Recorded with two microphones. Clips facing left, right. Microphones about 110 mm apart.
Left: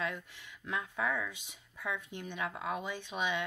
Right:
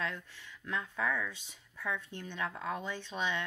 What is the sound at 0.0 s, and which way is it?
Speech, 15° left (ahead or behind).